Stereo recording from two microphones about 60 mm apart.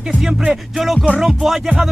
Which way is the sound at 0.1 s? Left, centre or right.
Centre.